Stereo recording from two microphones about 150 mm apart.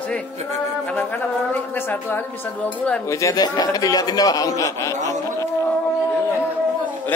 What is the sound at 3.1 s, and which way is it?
A man's voice, 20° left (ahead or behind).